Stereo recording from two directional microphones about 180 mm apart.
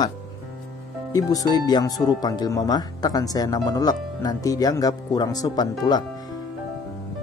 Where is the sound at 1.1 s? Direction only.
20° left (ahead or behind).